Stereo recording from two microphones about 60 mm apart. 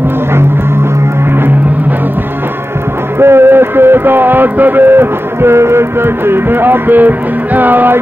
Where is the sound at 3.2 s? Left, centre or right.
Right.